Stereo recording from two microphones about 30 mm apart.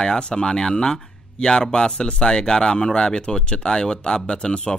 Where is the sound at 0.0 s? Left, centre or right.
Left.